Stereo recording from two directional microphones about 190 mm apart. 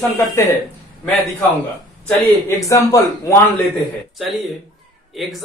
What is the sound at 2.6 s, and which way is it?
Speech, 15° left (ahead or behind).